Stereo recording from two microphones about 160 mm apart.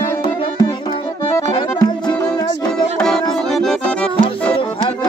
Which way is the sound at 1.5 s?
30° left (ahead or behind).